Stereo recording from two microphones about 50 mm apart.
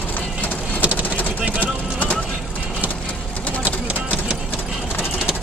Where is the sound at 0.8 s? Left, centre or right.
Right.